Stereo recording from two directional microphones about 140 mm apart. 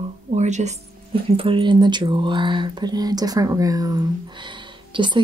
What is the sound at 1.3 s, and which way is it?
Speech, 40° right (ahead or behind).